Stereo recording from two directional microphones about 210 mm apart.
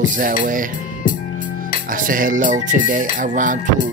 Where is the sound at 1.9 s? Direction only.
40° right (ahead or behind).